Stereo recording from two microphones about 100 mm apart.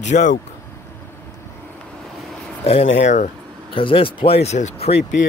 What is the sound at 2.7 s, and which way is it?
Speech, 90° left.